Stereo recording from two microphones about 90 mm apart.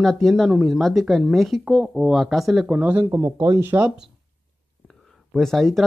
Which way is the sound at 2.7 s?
20° right (ahead or behind).